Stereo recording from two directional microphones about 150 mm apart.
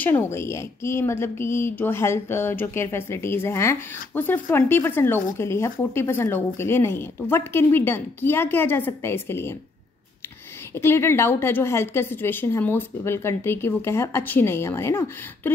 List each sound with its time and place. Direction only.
0.0 s a woman's voice: 15° left (ahead or behind)
10.7 s a woman's voice: 15° left (ahead or behind)